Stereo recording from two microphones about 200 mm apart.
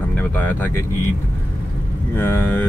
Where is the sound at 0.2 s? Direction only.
10° left (ahead or behind).